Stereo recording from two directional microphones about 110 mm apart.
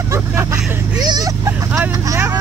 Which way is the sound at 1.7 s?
25° right (ahead or behind).